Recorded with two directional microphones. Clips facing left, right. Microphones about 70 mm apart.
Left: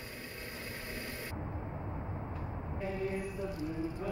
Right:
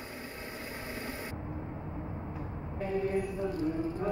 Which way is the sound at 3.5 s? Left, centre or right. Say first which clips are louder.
Right 5 dB; right.